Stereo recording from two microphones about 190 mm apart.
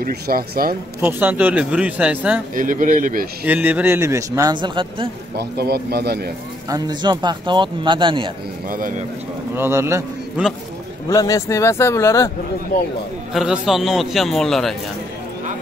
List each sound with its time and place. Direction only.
0.0 s speech: 50° right (ahead or behind)
1.0 s speech: 10° right (ahead or behind)
2.5 s speech: 45° right (ahead or behind)
3.4 s speech: 10° right (ahead or behind); by 5.1 s 25° right (ahead or behind)
5.3 s a man's voice: 55° right (ahead or behind)
6.7 s speech: 25° right (ahead or behind)
8.6 s speech: 45° right (ahead or behind)
9.6 s a man's voice: 15° right (ahead or behind)
11.1 s speech: 20° left (ahead or behind)
13.3 s a man's voice: centre (ahead or behind)